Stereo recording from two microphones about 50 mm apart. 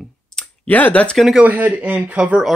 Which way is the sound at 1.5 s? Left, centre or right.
Right.